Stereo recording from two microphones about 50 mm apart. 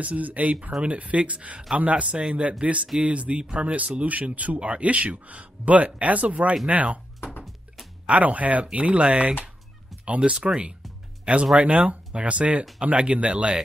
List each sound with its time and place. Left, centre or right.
0.0 s speech: right
7.4 s music: centre
8.1 s speech: right